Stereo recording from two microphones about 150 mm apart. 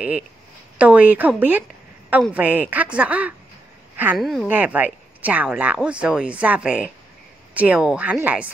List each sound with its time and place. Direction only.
0.7 s speech: 10° right (ahead or behind)
3.9 s a sound: 15° right (ahead or behind)
4.2 s speech: centre (ahead or behind)
4.5 s speech: 10° right (ahead or behind)